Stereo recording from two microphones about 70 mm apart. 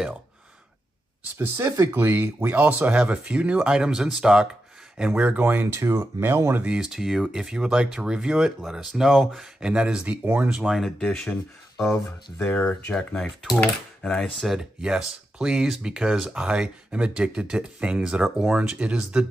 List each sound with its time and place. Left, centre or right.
1.9 s speech: right
6.6 s speech: centre
10.7 s speech: centre
12.4 s speech: left
14.4 s speech: centre